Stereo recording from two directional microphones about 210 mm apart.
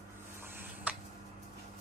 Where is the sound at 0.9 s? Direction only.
5° right (ahead or behind).